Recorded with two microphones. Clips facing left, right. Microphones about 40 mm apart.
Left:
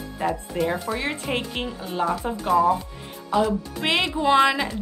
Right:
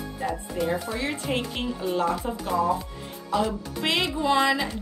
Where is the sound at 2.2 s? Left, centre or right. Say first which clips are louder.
Left 5 dB; left.